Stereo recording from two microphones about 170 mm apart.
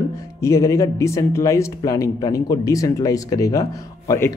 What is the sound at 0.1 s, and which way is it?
Speech, 15° left (ahead or behind).